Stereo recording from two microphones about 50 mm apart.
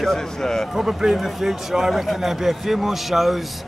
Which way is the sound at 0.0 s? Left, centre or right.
Centre.